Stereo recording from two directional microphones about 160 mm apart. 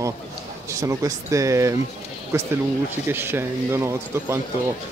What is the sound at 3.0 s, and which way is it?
Speech, 15° right (ahead or behind).